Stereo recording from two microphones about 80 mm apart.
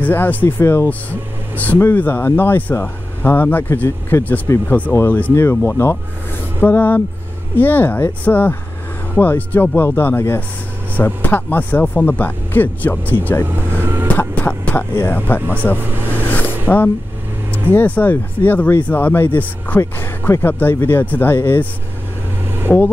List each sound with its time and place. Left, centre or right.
0.0 s speech: left
13.5 s vehicle: right
14.1 s a sound: left
15.0 s speech: left
16.3 s a sound: left
16.6 s speech: left
22.7 s speech: centre